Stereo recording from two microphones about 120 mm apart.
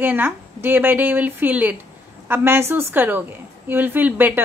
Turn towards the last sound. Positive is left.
turn(degrees=-15)  # may be behind; listen again after turning